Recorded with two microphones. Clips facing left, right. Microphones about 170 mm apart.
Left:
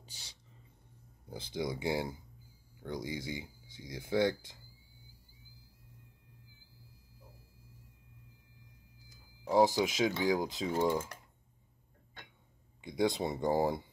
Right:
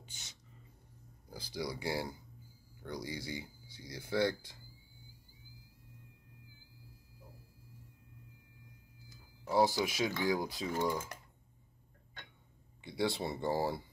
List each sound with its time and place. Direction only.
0.0 s speech: 35° left (ahead or behind)
9.5 s speech: 15° left (ahead or behind)
12.8 s speech: 20° left (ahead or behind)